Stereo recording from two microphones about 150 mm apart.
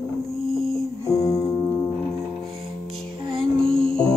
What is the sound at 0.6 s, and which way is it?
Music, centre (ahead or behind).